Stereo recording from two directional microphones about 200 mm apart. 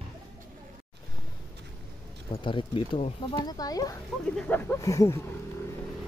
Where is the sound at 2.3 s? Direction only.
25° left (ahead or behind).